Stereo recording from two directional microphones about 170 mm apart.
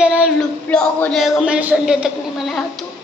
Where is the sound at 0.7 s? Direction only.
5° left (ahead or behind).